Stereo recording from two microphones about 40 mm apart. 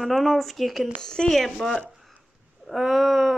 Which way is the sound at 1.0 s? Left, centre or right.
Centre.